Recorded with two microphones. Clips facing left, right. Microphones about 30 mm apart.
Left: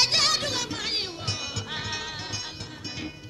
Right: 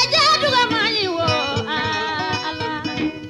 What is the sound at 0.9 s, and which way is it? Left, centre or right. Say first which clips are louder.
Music: right 12 dB; right.